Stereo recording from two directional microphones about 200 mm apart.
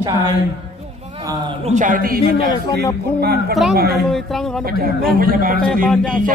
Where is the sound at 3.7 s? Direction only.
50° right (ahead or behind).